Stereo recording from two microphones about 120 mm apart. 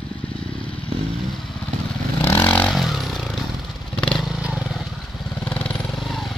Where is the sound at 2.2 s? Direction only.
20° left (ahead or behind).